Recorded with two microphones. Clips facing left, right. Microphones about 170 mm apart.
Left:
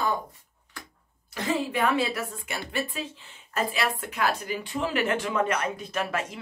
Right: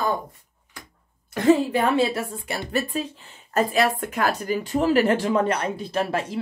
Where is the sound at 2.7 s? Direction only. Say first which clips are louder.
Right 6 dB; 40° right (ahead or behind).